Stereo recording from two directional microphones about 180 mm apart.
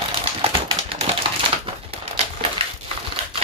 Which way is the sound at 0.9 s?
30° right (ahead or behind).